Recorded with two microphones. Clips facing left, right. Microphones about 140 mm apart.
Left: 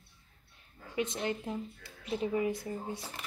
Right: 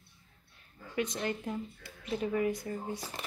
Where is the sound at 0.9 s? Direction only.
25° left (ahead or behind).